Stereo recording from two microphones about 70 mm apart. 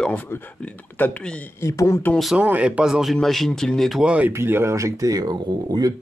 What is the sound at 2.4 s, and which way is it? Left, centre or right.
Speech, right.